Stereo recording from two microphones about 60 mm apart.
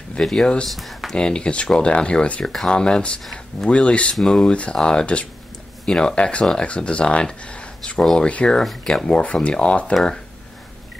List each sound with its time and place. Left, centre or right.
0.2 s speech: centre
0.7 s speech: centre
1.1 s speech: centre
8.5 s speech: centre
9.0 s speech: left